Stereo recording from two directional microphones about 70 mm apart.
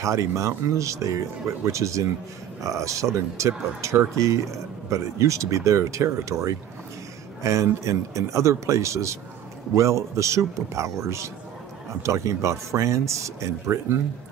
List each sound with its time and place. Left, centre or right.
0.0 s speech: right